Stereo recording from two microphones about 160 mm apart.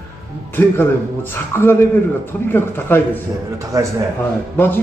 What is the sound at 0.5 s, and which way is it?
A man's voice, 15° left (ahead or behind).